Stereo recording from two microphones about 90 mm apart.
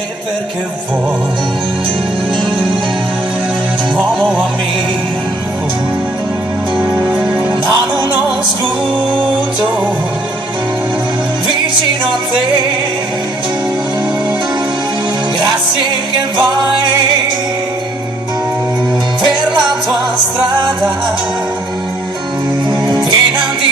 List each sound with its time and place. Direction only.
6.8 s music: 10° right (ahead or behind)
22.7 s music: 55° right (ahead or behind)